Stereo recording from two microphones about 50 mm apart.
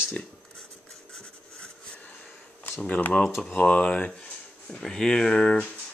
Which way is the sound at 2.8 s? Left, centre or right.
Left.